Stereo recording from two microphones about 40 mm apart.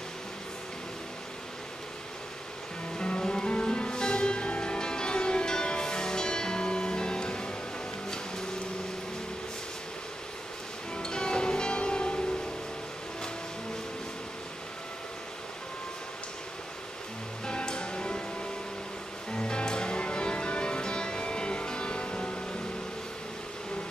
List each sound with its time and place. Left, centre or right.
3.0 s music: centre
11.0 s music: centre
17.5 s music: left